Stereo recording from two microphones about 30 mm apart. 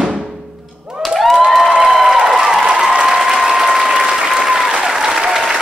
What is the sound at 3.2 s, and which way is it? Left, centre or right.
Applause, centre.